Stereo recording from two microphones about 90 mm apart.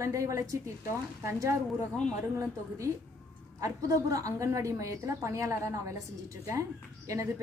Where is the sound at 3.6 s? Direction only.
40° right (ahead or behind).